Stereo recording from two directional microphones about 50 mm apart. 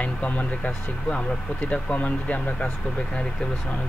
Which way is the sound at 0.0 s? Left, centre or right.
Left.